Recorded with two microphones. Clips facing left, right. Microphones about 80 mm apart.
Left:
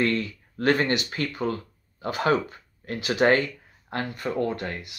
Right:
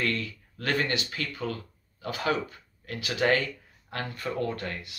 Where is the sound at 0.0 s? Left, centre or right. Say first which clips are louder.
Left 5 dB; left.